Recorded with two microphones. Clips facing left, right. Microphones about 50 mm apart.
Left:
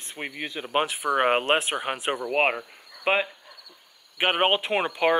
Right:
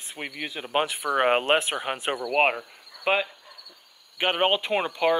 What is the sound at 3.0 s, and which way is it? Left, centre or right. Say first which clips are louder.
Speech: even; centre.